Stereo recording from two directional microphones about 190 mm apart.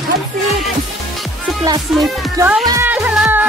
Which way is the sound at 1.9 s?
5° right (ahead or behind).